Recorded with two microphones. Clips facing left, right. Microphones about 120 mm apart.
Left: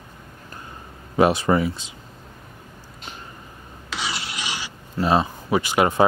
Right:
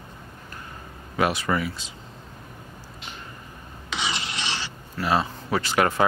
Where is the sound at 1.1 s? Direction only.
25° left (ahead or behind).